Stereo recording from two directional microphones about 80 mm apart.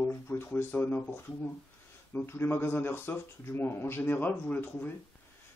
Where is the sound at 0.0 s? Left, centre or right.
Left.